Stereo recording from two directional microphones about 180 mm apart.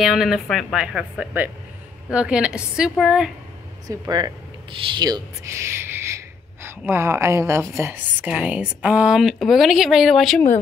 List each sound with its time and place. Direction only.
0.0 s a woman's voice: centre (ahead or behind)
3.8 s a woman's voice: 20° right (ahead or behind); by 10.4 s centre (ahead or behind)